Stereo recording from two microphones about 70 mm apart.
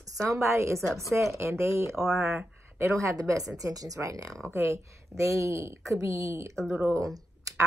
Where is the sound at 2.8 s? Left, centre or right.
Right.